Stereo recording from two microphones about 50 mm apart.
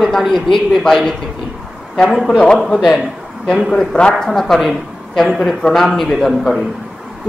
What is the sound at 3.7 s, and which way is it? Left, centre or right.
A man's voice, centre.